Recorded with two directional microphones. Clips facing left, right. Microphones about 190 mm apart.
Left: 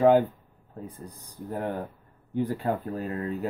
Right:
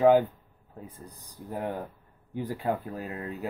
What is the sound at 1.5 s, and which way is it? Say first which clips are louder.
Speech: left 2 dB; 10° right (ahead or behind).